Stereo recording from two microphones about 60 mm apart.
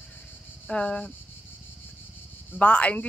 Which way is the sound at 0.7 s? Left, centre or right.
Centre.